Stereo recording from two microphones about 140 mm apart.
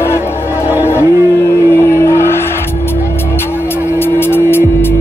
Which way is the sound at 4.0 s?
15° left (ahead or behind).